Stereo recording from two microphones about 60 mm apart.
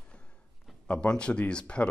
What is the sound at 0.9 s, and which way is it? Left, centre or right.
Speech, centre.